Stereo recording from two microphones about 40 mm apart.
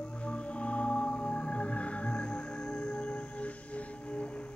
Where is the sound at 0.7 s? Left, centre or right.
Left.